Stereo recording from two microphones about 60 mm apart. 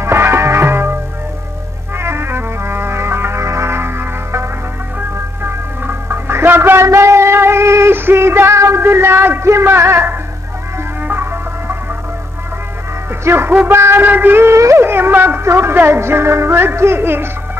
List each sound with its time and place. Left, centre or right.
0.0 s music: right
2.0 s music: right
6.8 s a sound: right
7.9 s music: right
8.5 s a sound: right
11.0 s music: right
13.1 s speech: right
13.7 s music: right
14.0 s a sound: right
14.8 s speech: right